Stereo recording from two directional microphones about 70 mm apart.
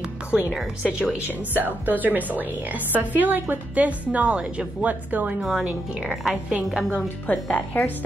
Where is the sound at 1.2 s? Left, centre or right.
Right.